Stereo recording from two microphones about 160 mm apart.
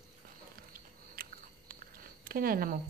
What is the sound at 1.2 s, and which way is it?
Biting, 65° right (ahead or behind).